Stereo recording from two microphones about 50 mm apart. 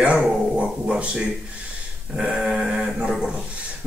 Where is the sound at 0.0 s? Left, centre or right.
Right.